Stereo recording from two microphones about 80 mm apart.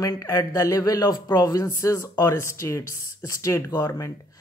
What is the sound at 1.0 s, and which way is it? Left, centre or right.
Speech, left.